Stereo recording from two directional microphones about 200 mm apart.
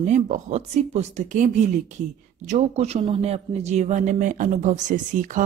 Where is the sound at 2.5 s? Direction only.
35° right (ahead or behind).